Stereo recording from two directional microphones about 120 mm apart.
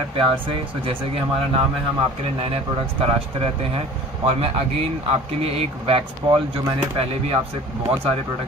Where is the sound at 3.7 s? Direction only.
55° right (ahead or behind).